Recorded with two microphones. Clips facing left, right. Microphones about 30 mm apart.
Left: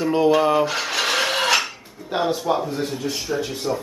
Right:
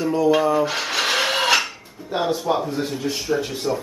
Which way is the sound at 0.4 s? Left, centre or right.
Left.